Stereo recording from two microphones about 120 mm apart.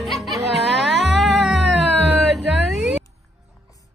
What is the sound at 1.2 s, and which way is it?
Cat, centre (ahead or behind).